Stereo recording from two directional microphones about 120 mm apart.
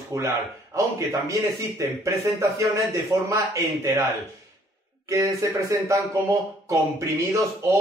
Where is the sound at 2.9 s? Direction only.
25° right (ahead or behind).